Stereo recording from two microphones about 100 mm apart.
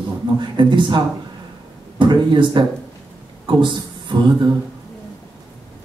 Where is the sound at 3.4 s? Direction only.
55° right (ahead or behind).